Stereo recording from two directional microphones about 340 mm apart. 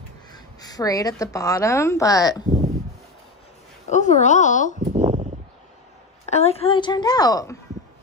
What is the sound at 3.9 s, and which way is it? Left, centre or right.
Speech, left.